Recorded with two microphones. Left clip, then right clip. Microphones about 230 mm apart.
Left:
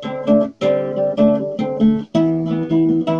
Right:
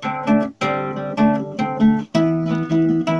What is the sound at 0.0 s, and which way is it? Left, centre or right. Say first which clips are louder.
Music: left 3 dB; right.